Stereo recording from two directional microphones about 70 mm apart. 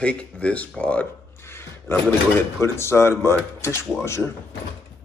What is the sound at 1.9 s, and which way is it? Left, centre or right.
Speech, left.